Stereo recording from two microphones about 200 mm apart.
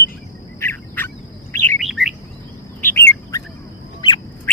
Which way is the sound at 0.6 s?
10° left (ahead or behind).